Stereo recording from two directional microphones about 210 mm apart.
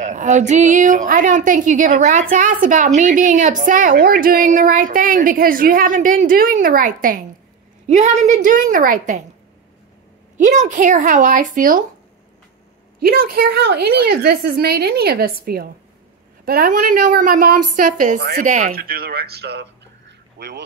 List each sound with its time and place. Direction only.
0.0 s a woman's voice: 35° right (ahead or behind)
10.4 s a woman's voice: 35° right (ahead or behind)
13.0 s a woman's voice: 45° right (ahead or behind)